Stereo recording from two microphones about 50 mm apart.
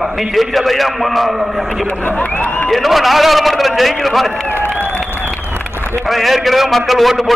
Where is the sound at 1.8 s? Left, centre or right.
Left.